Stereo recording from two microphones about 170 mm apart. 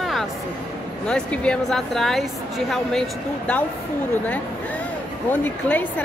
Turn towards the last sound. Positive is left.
turn(degrees=10)  # may be behind; listen again after turning